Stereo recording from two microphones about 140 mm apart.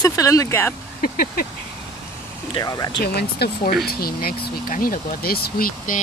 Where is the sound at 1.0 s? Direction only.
90° left.